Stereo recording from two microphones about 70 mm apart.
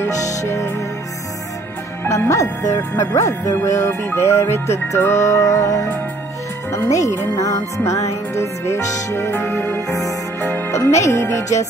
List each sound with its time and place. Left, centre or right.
0.4 s music: left
2.0 s music: left
4.1 s music: left
9.3 s music: left
9.8 s music: left